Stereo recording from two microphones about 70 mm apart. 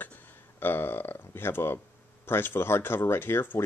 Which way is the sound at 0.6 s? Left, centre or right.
Left.